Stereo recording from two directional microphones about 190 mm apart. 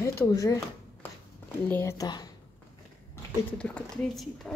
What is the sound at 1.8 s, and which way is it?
Speech, 15° left (ahead or behind).